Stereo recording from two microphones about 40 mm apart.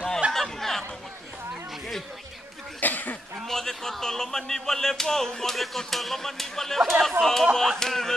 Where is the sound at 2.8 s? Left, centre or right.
Left.